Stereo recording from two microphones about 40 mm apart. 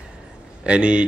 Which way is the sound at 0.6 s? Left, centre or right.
Right.